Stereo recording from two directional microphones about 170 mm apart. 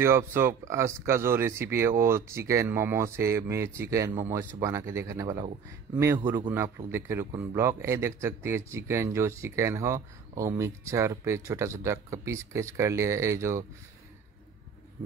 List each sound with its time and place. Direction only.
0.0 s speech: 15° right (ahead or behind)
6.9 s speech: 15° right (ahead or behind)